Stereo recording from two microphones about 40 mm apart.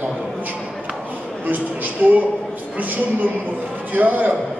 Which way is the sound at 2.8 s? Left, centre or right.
Right.